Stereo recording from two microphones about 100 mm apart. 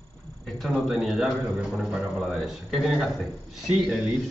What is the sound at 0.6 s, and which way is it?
A man's voice, centre (ahead or behind).